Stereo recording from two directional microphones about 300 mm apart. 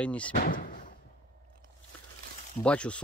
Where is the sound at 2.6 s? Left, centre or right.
Centre.